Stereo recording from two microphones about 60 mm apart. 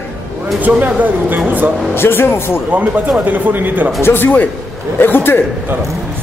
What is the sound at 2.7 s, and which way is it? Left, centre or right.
Speech, right.